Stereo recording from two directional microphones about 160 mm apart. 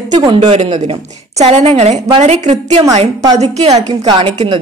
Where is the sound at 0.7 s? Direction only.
40° right (ahead or behind).